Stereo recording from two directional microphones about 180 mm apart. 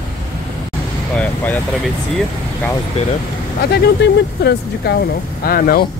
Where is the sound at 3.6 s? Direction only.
65° left (ahead or behind).